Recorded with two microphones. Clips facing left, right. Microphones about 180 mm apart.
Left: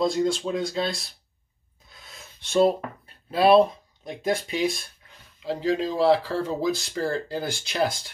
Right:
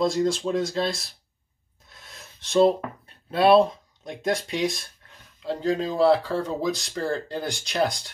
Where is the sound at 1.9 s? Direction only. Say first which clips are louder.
Even; centre (ahead or behind).